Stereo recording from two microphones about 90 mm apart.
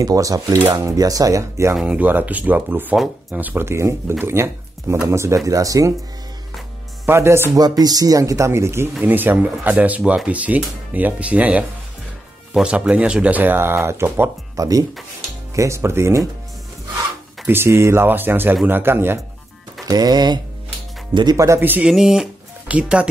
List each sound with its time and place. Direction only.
0.0 s speech: 40° right (ahead or behind)
1.9 s speech: 20° right (ahead or behind); by 5.9 s 40° right (ahead or behind)
7.1 s speech: 30° right (ahead or behind)
7.5 s speech: 45° right (ahead or behind); by 14.3 s 25° right (ahead or behind)
14.6 s speech: 40° right (ahead or behind)
17.5 s speech: 30° right (ahead or behind)
19.9 s speech: 50° right (ahead or behind)
21.5 s speech: 20° right (ahead or behind)
21.8 s speech: 5° right (ahead or behind)